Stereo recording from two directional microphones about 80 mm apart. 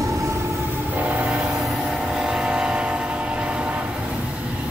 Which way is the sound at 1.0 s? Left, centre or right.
Right.